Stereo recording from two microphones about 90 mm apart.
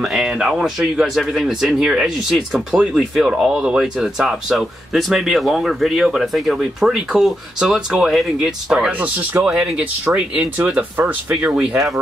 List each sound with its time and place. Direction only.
0.0 s speech: centre (ahead or behind)